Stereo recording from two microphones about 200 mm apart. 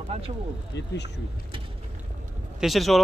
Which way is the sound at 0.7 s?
60° left (ahead or behind).